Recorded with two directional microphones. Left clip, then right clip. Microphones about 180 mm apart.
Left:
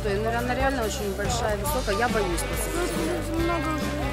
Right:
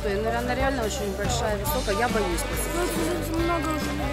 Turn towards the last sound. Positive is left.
turn(degrees=0)  # may be behind; listen again after turning